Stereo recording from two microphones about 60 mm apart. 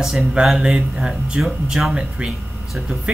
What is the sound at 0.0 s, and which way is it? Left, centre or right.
Speech, centre.